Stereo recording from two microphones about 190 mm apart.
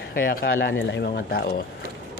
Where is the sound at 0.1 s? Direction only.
50° left (ahead or behind).